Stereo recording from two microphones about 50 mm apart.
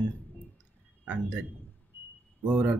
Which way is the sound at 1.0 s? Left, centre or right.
Right.